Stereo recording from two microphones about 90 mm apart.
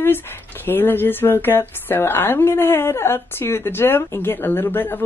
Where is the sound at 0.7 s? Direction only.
25° left (ahead or behind).